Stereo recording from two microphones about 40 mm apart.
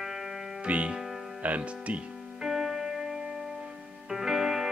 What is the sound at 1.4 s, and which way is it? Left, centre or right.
Speech, right.